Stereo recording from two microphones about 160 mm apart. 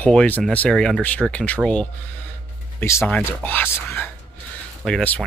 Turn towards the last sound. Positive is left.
turn(degrees=5)  # may be behind; listen again after turning